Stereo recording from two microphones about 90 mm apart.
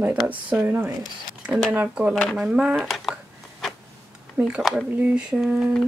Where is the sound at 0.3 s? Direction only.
20° right (ahead or behind).